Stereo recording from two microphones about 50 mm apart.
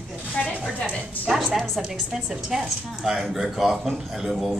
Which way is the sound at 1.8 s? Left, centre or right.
Centre.